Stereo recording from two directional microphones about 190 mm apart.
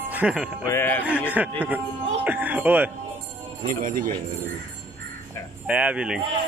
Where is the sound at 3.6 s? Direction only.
45° right (ahead or behind).